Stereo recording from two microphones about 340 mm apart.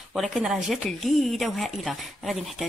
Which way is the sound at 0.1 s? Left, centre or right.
Centre.